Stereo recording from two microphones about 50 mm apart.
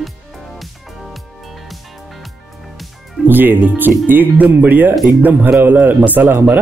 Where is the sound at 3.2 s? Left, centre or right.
Right.